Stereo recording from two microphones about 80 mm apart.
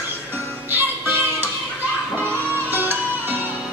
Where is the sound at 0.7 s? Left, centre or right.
Right.